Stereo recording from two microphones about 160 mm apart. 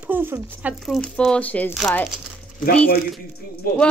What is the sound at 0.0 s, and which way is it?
Speech, 15° right (ahead or behind).